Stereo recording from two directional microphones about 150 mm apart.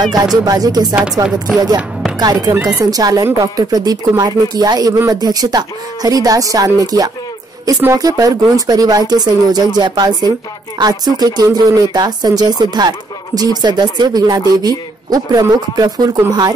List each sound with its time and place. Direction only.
0.0 s speech: 25° right (ahead or behind)
2.1 s speech: 25° right (ahead or behind)